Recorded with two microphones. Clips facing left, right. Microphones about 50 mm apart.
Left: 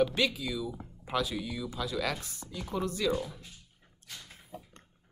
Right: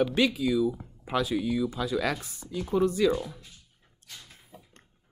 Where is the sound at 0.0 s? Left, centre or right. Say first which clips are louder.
Right 4 dB; centre.